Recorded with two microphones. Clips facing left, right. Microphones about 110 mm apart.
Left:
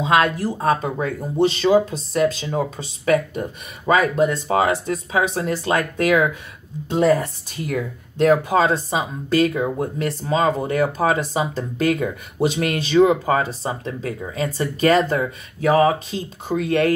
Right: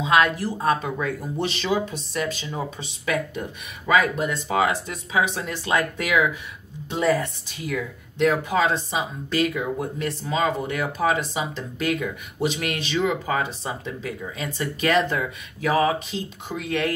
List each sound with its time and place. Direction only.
0.0 s speech: 45° left (ahead or behind)